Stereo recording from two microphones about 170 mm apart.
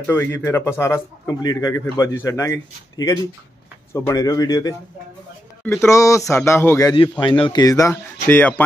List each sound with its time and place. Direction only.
0.0 s a man's voice: 15° left (ahead or behind)